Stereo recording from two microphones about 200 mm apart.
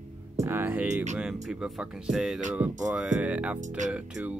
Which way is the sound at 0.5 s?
10° right (ahead or behind).